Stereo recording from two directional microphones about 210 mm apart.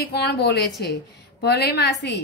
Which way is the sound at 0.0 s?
50° left (ahead or behind).